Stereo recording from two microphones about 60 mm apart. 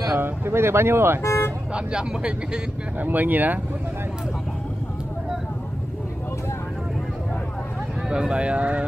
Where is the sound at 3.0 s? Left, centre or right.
Right.